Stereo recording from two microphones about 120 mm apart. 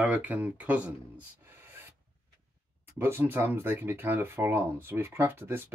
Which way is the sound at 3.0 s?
20° right (ahead or behind).